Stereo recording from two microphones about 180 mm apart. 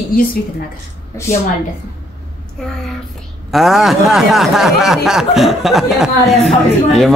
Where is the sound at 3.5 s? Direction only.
Centre (ahead or behind).